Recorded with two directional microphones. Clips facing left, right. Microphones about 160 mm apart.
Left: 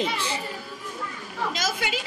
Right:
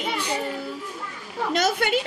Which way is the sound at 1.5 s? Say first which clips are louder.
Right 11 dB; 60° right (ahead or behind).